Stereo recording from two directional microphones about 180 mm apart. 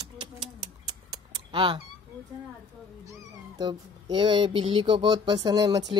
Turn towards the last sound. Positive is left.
turn(degrees=-20)  # may be behind; listen again after turning